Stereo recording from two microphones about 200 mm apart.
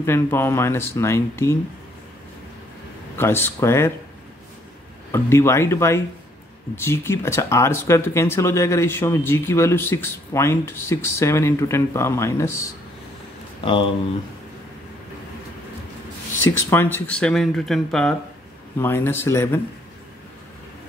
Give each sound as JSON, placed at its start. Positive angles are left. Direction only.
{"t": 0.0, "sound": "speech", "side_deg": 10}
{"t": 3.2, "sound": "speech", "side_deg": 10}
{"t": 5.1, "sound": "speech", "side_deg": 15}
{"t": 13.7, "sound": "speech", "side_deg": 25}
{"t": 16.7, "sound": "speech", "side_deg": 10}